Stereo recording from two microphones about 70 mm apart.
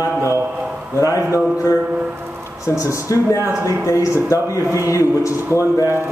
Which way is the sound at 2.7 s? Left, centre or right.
Left.